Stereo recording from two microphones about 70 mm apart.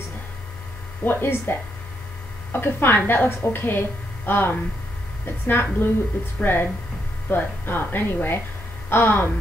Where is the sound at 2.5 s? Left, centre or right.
Left.